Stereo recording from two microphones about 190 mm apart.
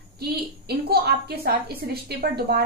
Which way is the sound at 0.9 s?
55° right (ahead or behind).